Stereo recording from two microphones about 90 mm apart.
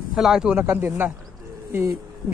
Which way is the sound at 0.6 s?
25° right (ahead or behind).